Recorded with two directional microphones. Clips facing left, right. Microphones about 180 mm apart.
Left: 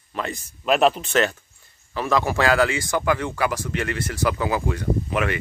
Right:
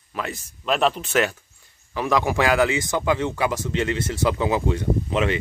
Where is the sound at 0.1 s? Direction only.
5° right (ahead or behind).